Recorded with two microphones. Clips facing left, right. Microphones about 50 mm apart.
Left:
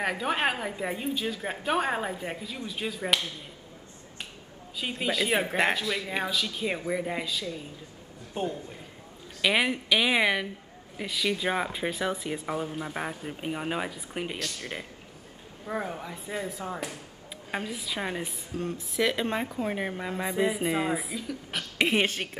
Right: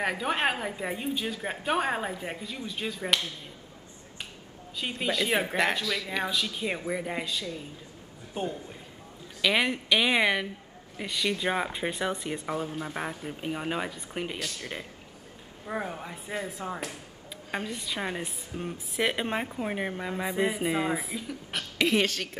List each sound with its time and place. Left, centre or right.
0.0 s speech: centre
4.7 s speech: centre
5.7 s speech: centre
6.2 s speech: centre
9.4 s speech: centre
18.5 s speech: centre
21.7 s a woman's voice: left